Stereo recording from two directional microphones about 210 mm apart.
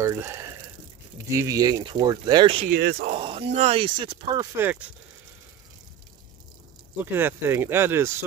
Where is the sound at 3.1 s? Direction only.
30° right (ahead or behind); by 4.8 s 10° right (ahead or behind).